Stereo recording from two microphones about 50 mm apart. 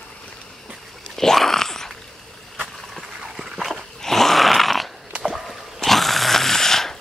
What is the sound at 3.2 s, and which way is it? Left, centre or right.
Dog, centre.